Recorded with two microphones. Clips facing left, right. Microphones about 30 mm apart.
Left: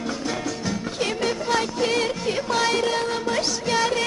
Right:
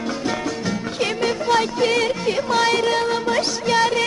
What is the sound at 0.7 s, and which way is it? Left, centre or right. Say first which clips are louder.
Music: right 2 dB; centre.